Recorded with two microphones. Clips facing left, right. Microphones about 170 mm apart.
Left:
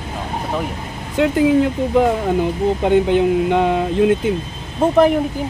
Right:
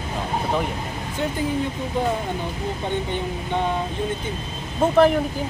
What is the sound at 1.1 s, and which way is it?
Speech, 85° left.